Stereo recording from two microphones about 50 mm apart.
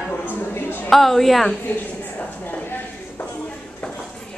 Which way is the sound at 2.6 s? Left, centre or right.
Left.